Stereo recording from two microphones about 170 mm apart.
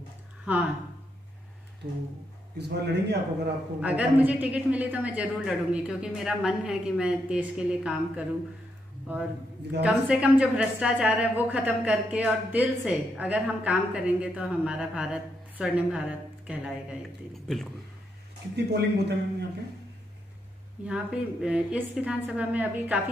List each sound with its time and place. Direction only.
1.8 s speech: 40° right (ahead or behind)
2.5 s a man's voice: 75° right (ahead or behind)
3.8 s a woman's voice: 10° right (ahead or behind)
18.7 s speech: 80° right
20.8 s a woman's voice: 5° right (ahead or behind)